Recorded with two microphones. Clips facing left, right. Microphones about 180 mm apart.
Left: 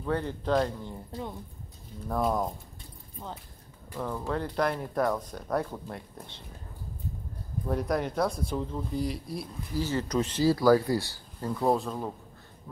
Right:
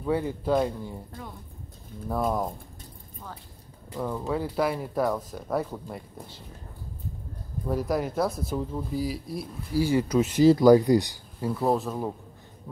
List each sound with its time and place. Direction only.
0.0 s speech: 10° right (ahead or behind)
2.0 s speech: centre (ahead or behind)
3.9 s speech: 15° right (ahead or behind)
7.6 s speech: centre (ahead or behind)
10.4 s speech: 20° right (ahead or behind)
11.5 s speech: centre (ahead or behind)